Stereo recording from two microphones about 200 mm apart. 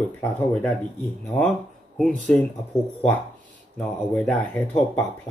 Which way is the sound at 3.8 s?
5° left (ahead or behind).